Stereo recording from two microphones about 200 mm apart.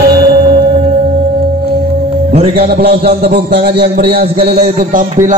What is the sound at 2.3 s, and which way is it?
Music, 30° right (ahead or behind).